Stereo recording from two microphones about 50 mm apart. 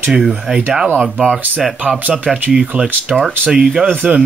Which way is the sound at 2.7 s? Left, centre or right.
Right.